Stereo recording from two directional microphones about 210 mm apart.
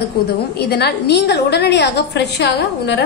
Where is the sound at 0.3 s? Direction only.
50° left (ahead or behind).